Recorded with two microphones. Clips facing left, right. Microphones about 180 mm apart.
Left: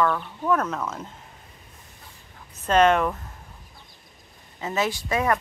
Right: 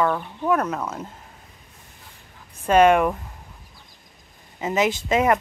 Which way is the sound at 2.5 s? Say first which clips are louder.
Right 3 dB; 10° right (ahead or behind).